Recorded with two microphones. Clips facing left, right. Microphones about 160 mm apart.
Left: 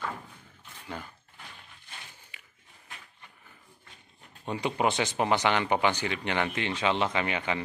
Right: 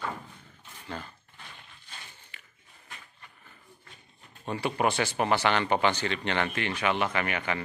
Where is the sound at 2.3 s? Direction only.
15° left (ahead or behind).